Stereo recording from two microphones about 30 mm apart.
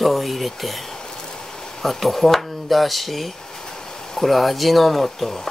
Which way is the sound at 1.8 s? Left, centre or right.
Centre.